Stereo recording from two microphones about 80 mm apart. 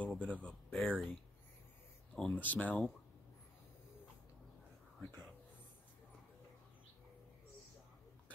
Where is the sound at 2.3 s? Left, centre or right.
Left.